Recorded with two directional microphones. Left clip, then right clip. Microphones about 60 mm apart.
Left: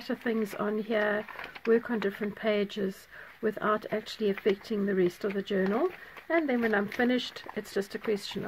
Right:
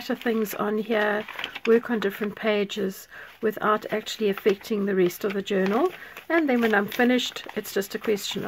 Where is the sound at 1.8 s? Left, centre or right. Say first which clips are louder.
Right 5 dB; right.